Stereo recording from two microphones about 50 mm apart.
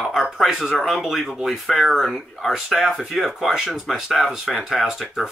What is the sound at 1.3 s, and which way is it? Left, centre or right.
Speech, centre.